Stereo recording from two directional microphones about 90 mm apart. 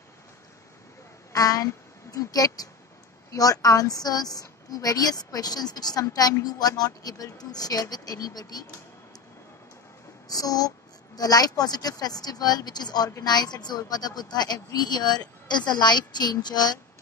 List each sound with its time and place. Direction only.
1.3 s a woman's voice: 40° left (ahead or behind)
10.2 s a woman's voice: 45° left (ahead or behind)